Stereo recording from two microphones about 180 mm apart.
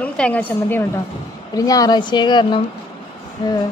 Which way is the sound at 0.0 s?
10° left (ahead or behind).